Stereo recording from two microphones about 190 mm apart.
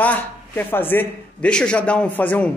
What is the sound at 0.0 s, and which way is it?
A man's voice, 10° left (ahead or behind).